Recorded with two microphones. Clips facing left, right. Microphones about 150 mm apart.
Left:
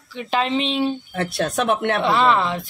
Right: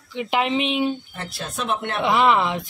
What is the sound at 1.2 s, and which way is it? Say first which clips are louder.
Speech: left 9 dB; 70° left (ahead or behind).